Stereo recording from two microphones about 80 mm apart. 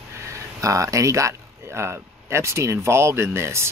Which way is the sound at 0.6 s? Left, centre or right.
Right.